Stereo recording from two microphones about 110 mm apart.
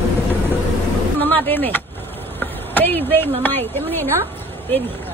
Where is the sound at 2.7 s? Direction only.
15° left (ahead or behind).